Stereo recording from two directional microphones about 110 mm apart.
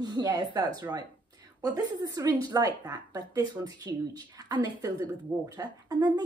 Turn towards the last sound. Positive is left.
turn(degrees=-35)  # may be behind; listen again after turning